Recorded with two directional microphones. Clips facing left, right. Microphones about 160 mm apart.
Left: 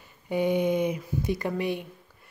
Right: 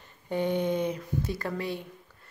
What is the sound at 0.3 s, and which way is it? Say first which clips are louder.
A woman's voice: left 3 dB; 10° left (ahead or behind).